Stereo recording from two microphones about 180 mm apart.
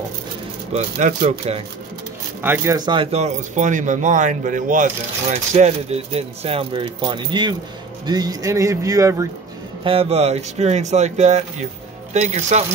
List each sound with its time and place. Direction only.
0.7 s speech: 40° right (ahead or behind)
2.4 s speech: 15° right (ahead or behind)
9.8 s speech: 35° right (ahead or behind)